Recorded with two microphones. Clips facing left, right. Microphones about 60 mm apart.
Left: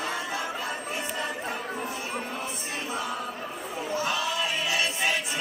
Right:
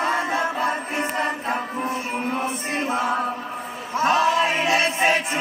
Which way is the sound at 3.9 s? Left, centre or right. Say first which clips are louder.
Right 11 dB; right.